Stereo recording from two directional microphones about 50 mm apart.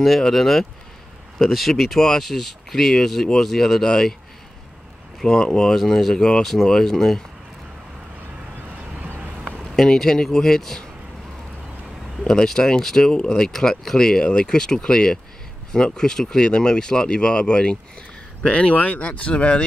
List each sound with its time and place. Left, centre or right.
0.0 s speech: centre
5.2 s speech: centre
6.1 s speech: centre
9.6 s speech: centre
12.2 s speech: centre
13.5 s speech: centre; by 19.6 s left